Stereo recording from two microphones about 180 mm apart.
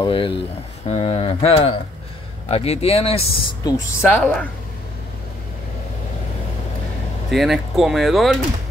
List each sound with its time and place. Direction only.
0.0 s speech: 30° left (ahead or behind)
3.6 s a woman's voice: 15° left (ahead or behind)
4.2 s speech: 5° left (ahead or behind)
7.2 s speech: centre (ahead or behind)